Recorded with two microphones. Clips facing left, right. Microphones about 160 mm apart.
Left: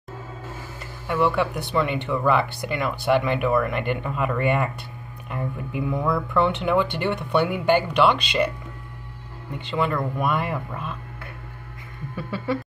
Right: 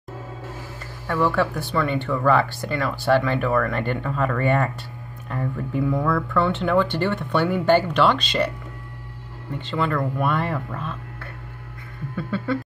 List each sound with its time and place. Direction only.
1.0 s speech: 15° left (ahead or behind)
9.6 s speech: 15° left (ahead or behind)
12.2 s speech: 10° left (ahead or behind)